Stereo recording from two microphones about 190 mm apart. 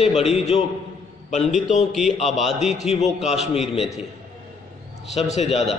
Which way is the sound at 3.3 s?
Centre (ahead or behind).